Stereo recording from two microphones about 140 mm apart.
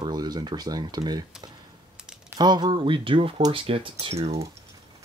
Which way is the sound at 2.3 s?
30° right (ahead or behind).